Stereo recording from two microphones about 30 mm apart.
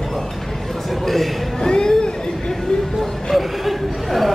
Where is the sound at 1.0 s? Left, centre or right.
Centre.